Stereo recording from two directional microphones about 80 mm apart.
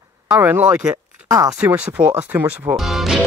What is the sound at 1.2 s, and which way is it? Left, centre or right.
Speech, right.